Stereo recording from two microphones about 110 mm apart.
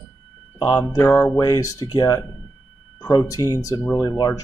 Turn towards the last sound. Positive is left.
turn(degrees=30)  # may be behind; listen again after turning